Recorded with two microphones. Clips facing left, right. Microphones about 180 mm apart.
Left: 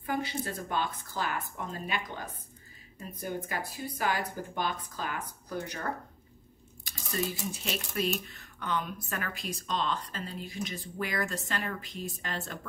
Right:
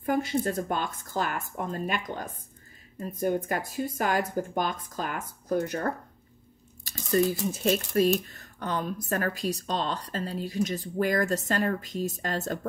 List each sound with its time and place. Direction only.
0.0 s speech: 45° right (ahead or behind)
7.6 s speech: 40° right (ahead or behind)